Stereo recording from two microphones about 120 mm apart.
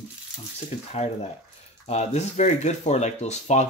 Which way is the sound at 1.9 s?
65° left (ahead or behind).